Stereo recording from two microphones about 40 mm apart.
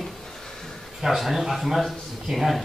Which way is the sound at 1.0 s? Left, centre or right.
Centre.